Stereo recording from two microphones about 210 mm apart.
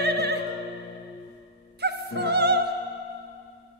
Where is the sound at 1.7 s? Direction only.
50° right (ahead or behind).